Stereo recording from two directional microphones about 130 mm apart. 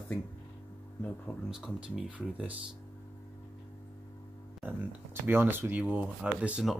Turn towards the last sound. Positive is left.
turn(degrees=-5)  # may be behind; listen again after turning